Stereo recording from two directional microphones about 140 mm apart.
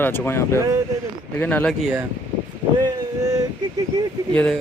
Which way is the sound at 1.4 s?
10° left (ahead or behind).